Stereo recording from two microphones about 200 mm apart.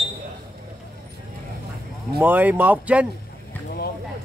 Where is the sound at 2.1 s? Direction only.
10° right (ahead or behind).